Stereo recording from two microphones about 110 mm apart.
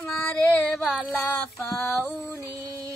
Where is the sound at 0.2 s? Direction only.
15° left (ahead or behind).